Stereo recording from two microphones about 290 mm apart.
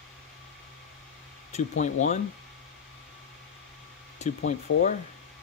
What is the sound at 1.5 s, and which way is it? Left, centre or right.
Speech, left.